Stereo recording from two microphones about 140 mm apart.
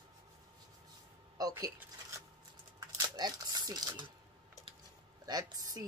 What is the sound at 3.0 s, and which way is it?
Speech, 30° right (ahead or behind).